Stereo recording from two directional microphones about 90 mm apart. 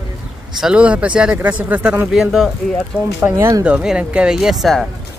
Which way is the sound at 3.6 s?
10° right (ahead or behind).